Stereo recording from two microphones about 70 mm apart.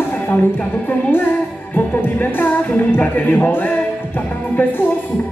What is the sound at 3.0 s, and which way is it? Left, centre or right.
Speech, left.